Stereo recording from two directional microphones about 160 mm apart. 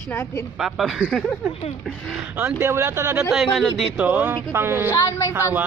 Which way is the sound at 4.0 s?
10° right (ahead or behind).